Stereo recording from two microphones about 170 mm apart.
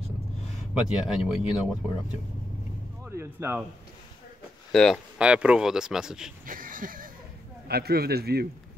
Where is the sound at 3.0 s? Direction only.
15° right (ahead or behind).